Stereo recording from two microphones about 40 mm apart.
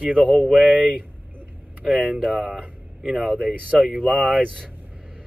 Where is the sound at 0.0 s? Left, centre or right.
Right.